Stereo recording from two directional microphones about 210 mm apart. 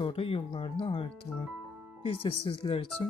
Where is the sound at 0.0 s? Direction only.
25° left (ahead or behind).